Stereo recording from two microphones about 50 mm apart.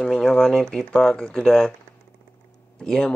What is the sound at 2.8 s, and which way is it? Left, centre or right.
Speech, centre.